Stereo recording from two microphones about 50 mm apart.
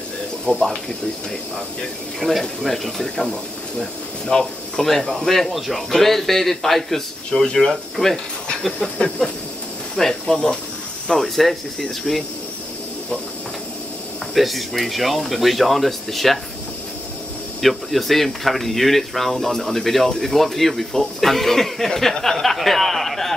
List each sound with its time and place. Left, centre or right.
0.6 s speech: centre
2.1 s speech: centre
8.7 s a sound: centre
11.1 s speech: centre
14.3 s speech: centre
17.6 s speech: centre